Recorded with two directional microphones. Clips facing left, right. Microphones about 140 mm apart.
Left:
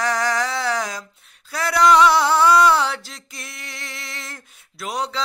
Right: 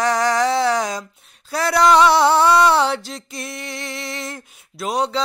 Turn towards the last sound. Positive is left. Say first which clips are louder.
# right 5 dB
turn(degrees=-25)  # may be behind; listen again after turning